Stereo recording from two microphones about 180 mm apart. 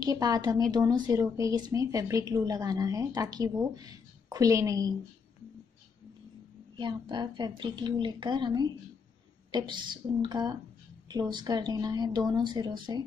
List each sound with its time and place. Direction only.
0.0 s a woman's voice: 20° right (ahead or behind)
6.8 s a woman's voice: 25° right (ahead or behind)